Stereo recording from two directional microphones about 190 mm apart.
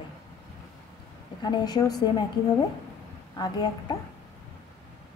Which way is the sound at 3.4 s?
20° left (ahead or behind).